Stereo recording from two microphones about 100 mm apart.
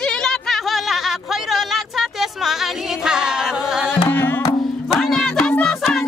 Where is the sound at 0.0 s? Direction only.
10° left (ahead or behind).